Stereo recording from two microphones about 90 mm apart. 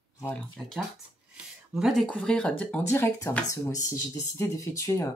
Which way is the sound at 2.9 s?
30° left (ahead or behind).